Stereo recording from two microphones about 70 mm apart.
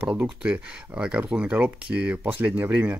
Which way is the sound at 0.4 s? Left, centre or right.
Centre.